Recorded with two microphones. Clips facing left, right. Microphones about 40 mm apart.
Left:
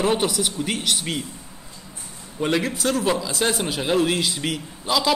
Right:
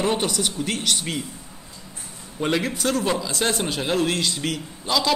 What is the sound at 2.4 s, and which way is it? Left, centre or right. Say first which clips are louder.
Speech: left 1 dB; centre.